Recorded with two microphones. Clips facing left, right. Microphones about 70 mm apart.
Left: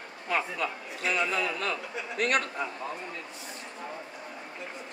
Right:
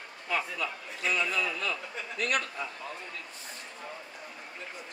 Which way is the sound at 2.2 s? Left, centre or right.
Left.